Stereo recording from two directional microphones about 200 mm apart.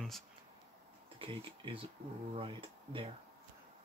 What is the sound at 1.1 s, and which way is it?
Speech, 25° right (ahead or behind).